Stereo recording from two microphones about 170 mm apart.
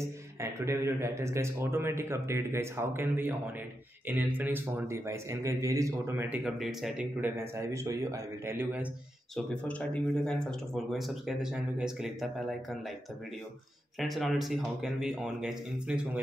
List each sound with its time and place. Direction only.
0.4 s a man's voice: 15° right (ahead or behind)
9.3 s speech: 5° left (ahead or behind)
13.9 s speech: centre (ahead or behind)